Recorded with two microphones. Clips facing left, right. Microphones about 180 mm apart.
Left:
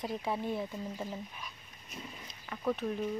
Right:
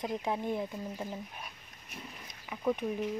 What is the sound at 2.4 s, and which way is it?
Speech, 10° right (ahead or behind).